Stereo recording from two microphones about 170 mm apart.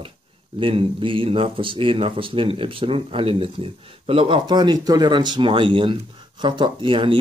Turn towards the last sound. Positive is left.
turn(degrees=-30)  # may be behind; listen again after turning